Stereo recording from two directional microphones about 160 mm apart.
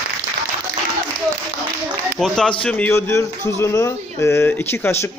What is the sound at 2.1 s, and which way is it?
A man's voice, 5° left (ahead or behind).